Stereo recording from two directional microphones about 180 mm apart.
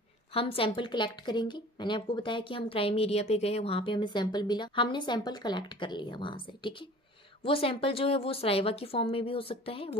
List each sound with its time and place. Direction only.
0.3 s a woman's voice: 30° left (ahead or behind)